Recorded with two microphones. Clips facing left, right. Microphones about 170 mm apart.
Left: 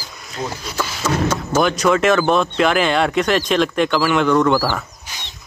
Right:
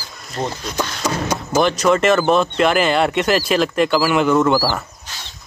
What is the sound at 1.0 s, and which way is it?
Speech, 15° right (ahead or behind).